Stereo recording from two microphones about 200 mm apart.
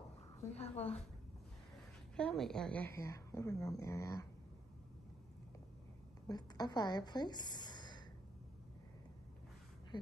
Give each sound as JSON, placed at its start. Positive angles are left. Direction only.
{"t": 0.6, "sound": "a woman's voice", "side_deg": 30}
{"t": 2.1, "sound": "a woman's voice", "side_deg": 5}
{"t": 6.2, "sound": "a woman's voice", "side_deg": 20}